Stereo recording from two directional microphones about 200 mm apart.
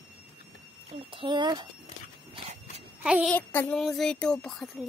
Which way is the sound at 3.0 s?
5° right (ahead or behind).